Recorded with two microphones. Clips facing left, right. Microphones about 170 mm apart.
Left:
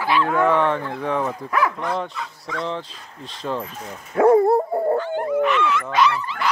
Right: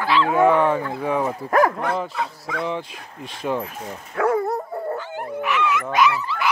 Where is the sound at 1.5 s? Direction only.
50° right (ahead or behind).